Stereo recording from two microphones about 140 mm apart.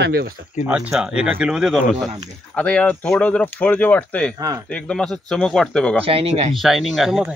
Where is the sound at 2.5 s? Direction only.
10° left (ahead or behind).